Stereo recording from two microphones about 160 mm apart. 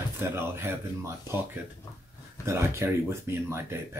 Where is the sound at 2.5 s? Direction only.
15° right (ahead or behind).